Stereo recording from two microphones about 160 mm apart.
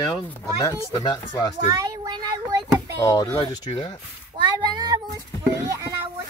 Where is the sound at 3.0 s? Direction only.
20° left (ahead or behind).